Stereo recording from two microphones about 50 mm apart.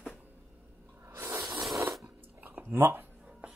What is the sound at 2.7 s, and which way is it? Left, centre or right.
Speech, right.